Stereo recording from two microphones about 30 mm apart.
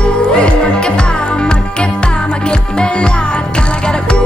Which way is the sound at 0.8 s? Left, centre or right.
Left.